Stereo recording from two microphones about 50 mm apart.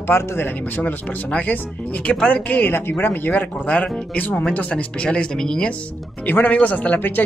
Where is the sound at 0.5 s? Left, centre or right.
Left.